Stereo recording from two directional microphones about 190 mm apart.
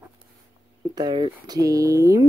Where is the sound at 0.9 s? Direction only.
25° right (ahead or behind).